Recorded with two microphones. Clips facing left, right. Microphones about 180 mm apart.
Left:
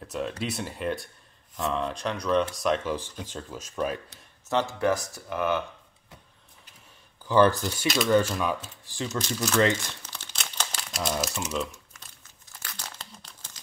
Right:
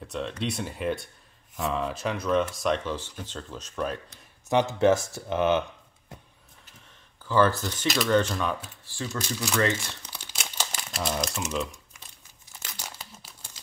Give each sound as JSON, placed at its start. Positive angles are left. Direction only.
{"t": 0.0, "sound": "speech", "side_deg": 5}
{"t": 4.5, "sound": "speech", "side_deg": -15}
{"t": 7.2, "sound": "speech", "side_deg": 15}
{"t": 8.8, "sound": "speech", "side_deg": 20}
{"t": 10.0, "sound": "crumpling", "side_deg": -10}
{"t": 12.6, "sound": "crumpling", "side_deg": -10}